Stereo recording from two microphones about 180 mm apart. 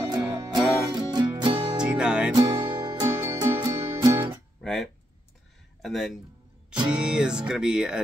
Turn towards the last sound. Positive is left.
turn(degrees=-5)  # may be behind; listen again after turning